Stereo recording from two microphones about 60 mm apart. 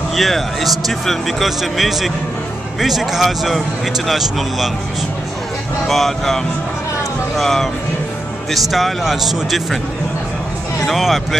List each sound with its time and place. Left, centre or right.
0.1 s speech: centre
5.9 s speech: centre
10.9 s speech: centre